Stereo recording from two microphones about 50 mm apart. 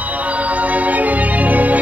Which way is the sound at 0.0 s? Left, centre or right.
Right.